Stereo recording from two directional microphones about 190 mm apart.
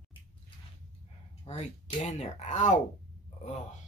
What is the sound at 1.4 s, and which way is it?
Speech, 30° left (ahead or behind).